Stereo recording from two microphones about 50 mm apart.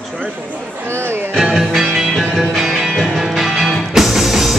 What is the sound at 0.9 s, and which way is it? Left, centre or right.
Music, right.